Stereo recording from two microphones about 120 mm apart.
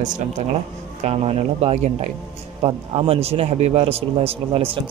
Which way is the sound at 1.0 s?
60° right (ahead or behind).